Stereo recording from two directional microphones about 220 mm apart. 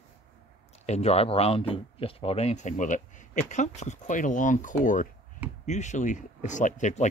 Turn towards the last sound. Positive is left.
turn(degrees=35)  # may be behind; listen again after turning